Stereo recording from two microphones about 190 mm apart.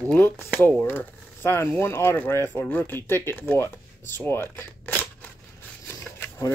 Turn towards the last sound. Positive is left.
turn(degrees=10)  # may be behind; listen again after turning